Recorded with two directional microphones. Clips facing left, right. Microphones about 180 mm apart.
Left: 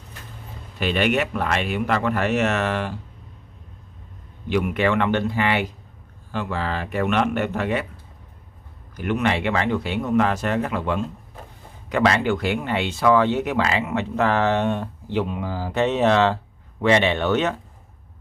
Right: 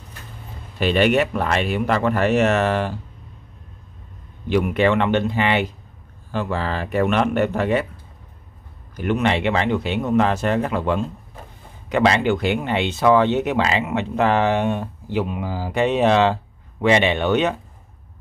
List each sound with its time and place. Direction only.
0.7 s speech: 35° right (ahead or behind)
4.5 s speech: 30° right (ahead or behind)
6.3 s speech: 35° right (ahead or behind)
8.9 s speech: 30° right (ahead or behind)
11.9 s speech: 20° right (ahead or behind)